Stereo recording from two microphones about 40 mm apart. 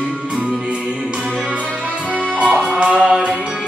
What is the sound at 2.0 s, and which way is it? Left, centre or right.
Music, left.